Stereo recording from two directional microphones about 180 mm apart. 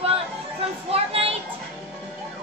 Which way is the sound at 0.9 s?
35° right (ahead or behind).